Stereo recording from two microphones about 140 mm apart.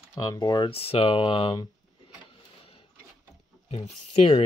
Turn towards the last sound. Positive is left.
turn(degrees=45)  # may be behind; listen again after turning